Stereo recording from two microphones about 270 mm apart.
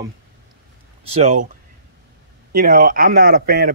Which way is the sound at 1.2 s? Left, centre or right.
Right.